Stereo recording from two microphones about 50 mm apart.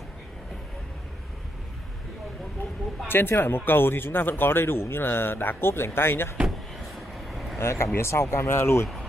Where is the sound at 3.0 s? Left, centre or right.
Left.